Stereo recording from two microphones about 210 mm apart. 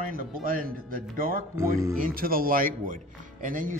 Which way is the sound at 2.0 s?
45° right (ahead or behind).